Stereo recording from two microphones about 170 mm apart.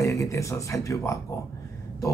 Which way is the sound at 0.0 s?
20° left (ahead or behind).